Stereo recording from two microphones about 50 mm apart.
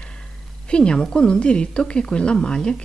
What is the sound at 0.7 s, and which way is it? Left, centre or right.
A woman's voice, centre.